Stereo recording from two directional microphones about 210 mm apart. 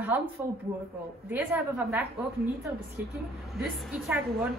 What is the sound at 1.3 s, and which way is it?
A woman's voice, 5° right (ahead or behind).